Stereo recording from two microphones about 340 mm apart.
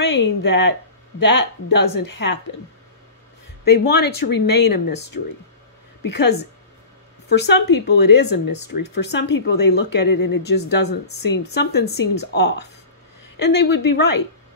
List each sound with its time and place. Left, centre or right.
0.0 s a sound: left
0.5 s speech: left
3.6 s speech: left